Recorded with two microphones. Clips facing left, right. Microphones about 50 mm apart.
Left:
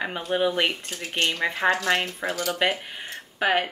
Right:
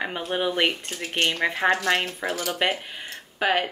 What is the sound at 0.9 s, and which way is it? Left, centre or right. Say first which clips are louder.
Speech: right 1 dB; right.